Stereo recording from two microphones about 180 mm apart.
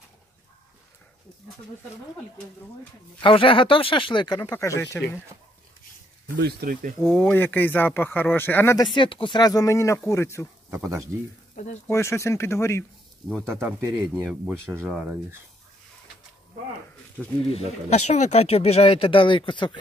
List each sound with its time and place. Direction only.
3.2 s speech: 30° left (ahead or behind)
6.3 s speech: 60° right (ahead or behind)
7.0 s speech: 10° left (ahead or behind)
8.9 s speech: 30° left (ahead or behind)
11.1 s speech: 15° right (ahead or behind)
11.5 s speech: 45° left (ahead or behind)
11.9 s speech: 15° left (ahead or behind)
13.4 s speech: 15° right (ahead or behind)
17.5 s speech: 35° left (ahead or behind)